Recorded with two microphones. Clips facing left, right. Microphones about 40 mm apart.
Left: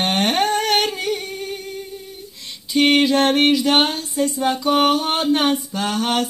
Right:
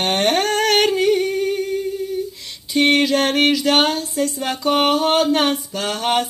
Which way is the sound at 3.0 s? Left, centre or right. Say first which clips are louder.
Left 1 dB; left.